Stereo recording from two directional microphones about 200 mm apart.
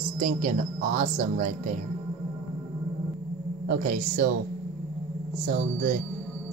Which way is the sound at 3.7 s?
45° right (ahead or behind).